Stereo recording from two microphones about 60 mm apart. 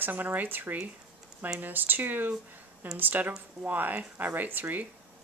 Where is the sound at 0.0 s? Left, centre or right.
Right.